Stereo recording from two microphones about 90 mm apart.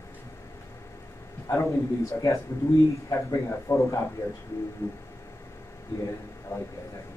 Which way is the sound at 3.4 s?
30° left (ahead or behind).